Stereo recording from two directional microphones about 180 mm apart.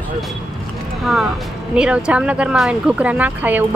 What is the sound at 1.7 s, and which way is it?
Speech, 5° right (ahead or behind).